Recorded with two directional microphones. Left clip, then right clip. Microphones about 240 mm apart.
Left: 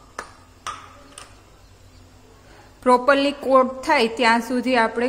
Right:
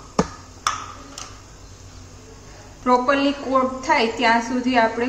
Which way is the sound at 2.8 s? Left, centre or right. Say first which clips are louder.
Left 2 dB; left.